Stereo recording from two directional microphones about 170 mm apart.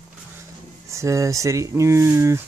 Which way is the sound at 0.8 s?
15° right (ahead or behind).